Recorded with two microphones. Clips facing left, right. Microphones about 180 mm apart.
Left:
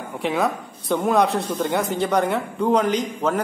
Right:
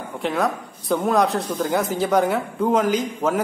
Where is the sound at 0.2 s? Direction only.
Centre (ahead or behind).